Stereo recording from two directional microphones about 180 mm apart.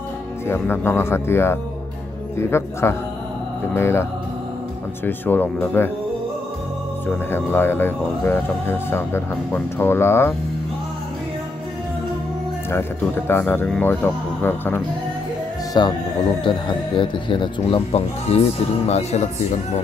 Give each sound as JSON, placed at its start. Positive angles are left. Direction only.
{"t": 0.5, "sound": "speech", "side_deg": 15}
{"t": 7.1, "sound": "speech", "side_deg": 10}
{"t": 13.3, "sound": "speech", "side_deg": 10}
{"t": 15.8, "sound": "speech", "side_deg": 25}